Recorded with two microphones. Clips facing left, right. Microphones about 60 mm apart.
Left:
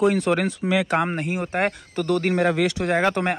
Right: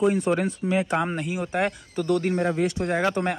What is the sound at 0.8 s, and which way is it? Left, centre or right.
Speech, left.